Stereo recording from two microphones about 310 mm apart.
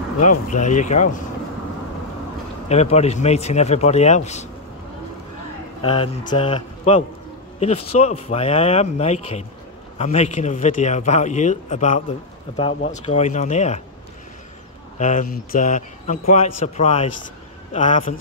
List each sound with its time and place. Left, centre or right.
0.5 s speech: left
2.7 s speech: left
5.8 s speech: centre
15.0 s speech: left